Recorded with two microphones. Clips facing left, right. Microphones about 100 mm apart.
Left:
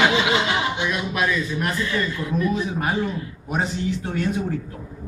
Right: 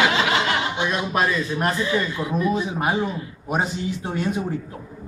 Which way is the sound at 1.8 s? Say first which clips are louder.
Right 2 dB; 20° right (ahead or behind).